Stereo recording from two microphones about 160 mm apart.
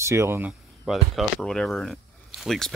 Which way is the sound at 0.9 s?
Centre (ahead or behind).